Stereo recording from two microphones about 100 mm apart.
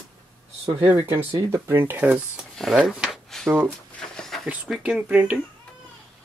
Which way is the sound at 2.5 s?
Centre (ahead or behind).